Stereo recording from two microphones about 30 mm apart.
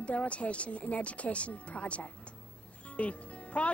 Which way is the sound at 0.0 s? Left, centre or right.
Left.